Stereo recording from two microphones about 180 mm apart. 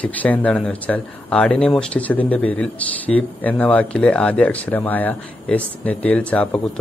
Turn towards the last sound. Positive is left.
turn(degrees=5)  # may be behind; listen again after turning